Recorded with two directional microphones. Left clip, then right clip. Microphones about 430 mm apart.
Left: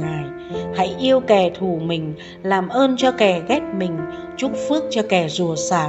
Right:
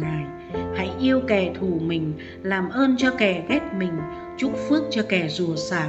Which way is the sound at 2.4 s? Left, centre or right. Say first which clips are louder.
Left 5 dB; centre.